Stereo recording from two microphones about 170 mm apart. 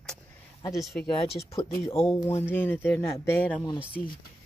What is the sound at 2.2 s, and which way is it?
Speech, 15° left (ahead or behind).